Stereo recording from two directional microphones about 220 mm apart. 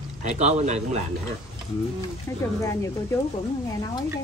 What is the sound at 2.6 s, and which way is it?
Speech, 15° left (ahead or behind).